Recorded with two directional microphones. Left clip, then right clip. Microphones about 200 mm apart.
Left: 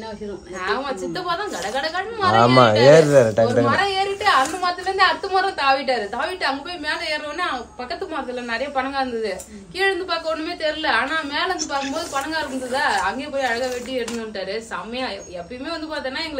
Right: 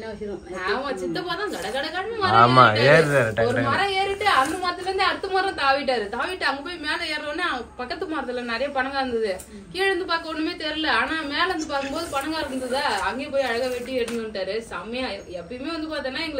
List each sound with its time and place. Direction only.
0.7 s a woman's voice: centre (ahead or behind)
2.3 s speech: 25° left (ahead or behind)
3.6 s a woman's voice: 5° left (ahead or behind)